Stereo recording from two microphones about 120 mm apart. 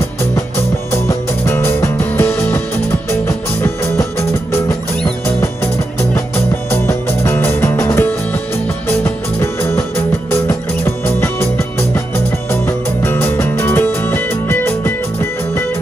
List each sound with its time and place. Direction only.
0.9 s music: 20° left (ahead or behind)